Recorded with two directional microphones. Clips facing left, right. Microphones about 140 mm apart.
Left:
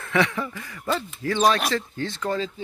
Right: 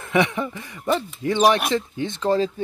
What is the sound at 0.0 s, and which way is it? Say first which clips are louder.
Speech: right 3 dB; 20° right (ahead or behind).